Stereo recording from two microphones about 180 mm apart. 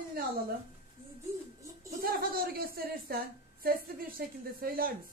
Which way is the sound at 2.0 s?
55° right (ahead or behind).